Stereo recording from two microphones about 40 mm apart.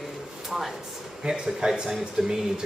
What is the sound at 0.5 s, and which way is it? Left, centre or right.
Speech, centre.